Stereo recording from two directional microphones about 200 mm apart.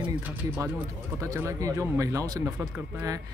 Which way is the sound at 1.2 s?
15° right (ahead or behind).